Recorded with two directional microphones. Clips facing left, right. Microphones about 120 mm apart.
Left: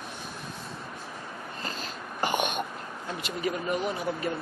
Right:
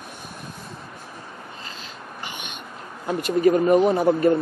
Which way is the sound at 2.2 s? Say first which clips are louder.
Left 11 dB; 45° left (ahead or behind).